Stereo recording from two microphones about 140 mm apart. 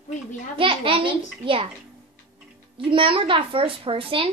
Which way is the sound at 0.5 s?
40° right (ahead or behind).